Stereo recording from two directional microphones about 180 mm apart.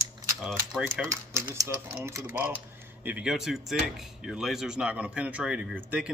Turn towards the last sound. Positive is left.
turn(degrees=-10)  # may be behind; listen again after turning